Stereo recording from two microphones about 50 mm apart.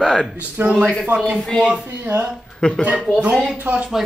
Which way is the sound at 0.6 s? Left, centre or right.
Right.